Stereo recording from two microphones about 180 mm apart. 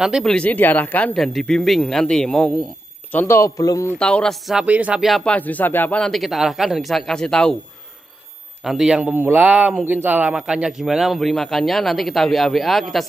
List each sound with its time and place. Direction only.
0.0 s speech: centre (ahead or behind)
3.1 s a man's voice: 10° left (ahead or behind)
4.0 s speech: 5° left (ahead or behind)
8.6 s speech: 5° right (ahead or behind)